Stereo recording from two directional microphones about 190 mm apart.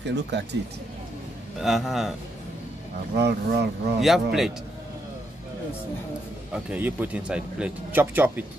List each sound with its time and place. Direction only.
0.0 s speech: 65° right (ahead or behind)
1.6 s a man's voice: centre (ahead or behind)
3.2 s speech: 60° right (ahead or behind)
4.0 s a man's voice: centre (ahead or behind)
6.5 s speech: 5° right (ahead or behind)